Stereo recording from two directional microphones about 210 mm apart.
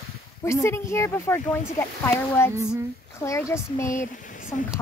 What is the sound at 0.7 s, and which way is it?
Speech, 10° left (ahead or behind).